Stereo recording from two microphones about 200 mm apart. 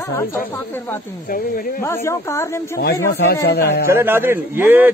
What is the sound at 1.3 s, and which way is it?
Speech, 45° left (ahead or behind).